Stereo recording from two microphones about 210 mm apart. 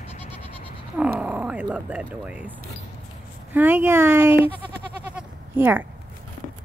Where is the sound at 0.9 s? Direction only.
5° right (ahead or behind).